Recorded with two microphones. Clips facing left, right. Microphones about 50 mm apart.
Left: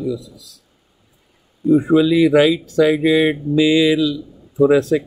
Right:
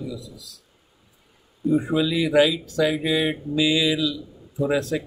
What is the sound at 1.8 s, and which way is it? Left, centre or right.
Speech, left.